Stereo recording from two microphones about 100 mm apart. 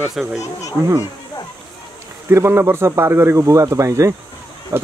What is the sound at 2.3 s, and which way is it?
Speech, 30° right (ahead or behind).